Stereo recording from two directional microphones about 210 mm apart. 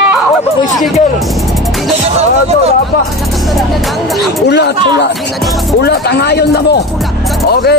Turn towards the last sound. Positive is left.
turn(degrees=50)  # may be behind; listen again after turning